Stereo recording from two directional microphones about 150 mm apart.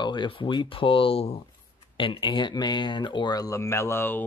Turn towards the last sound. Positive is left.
turn(degrees=15)  # may be behind; listen again after turning